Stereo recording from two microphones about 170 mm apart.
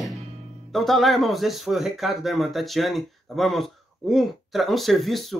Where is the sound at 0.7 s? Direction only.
Centre (ahead or behind).